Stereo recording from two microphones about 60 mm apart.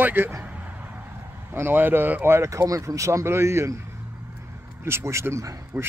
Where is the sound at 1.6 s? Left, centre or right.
Right.